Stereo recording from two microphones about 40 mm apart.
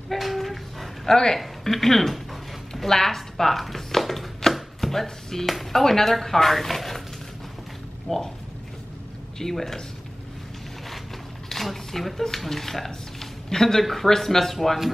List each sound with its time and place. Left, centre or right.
0.1 s a sound: centre
1.1 s speech: centre
1.4 s speech: centre
2.7 s a sound: centre
4.6 s chopping: centre
5.0 s speech: centre
8.1 s speech: centre
9.4 s speech: centre
11.4 s a sound: centre
12.4 s speech: centre